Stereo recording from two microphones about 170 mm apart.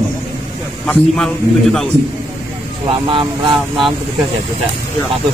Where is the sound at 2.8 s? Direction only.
30° right (ahead or behind).